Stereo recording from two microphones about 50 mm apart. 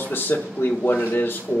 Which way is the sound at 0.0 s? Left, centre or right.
Left.